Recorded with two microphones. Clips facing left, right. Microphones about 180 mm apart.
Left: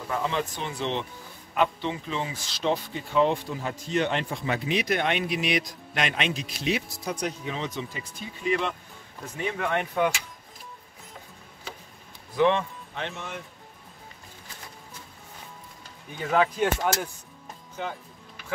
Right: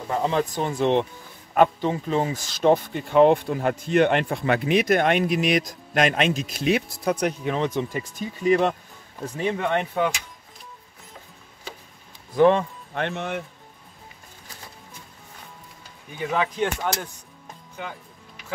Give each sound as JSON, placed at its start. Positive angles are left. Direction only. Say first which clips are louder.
{"t": 0.1, "sound": "speech", "louder": "right 5 dB", "side_deg": -35}
{"t": 8.5, "sound": "speech", "louder": "right 7 dB", "side_deg": -45}
{"t": 9.4, "sound": "speech", "louder": "right 4 dB", "side_deg": -30}
{"t": 12.4, "sound": "speech", "louder": "right 5 dB", "side_deg": -40}
{"t": 12.9, "sound": "speech", "louder": "right 8 dB", "side_deg": -60}
{"t": 16.2, "sound": "speech", "louder": "left 1 dB", "side_deg": 0}